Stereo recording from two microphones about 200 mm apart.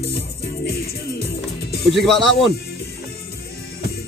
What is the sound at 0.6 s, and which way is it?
Music, 50° left (ahead or behind).